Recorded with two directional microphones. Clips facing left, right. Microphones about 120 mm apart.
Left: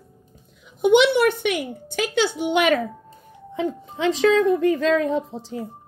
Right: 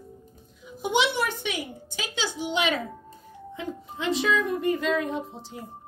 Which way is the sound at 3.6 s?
80° left.